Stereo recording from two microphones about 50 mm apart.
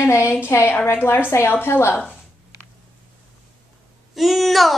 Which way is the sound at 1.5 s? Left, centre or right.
Left.